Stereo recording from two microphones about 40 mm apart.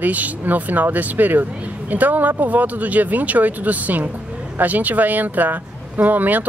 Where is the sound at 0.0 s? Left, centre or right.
Right.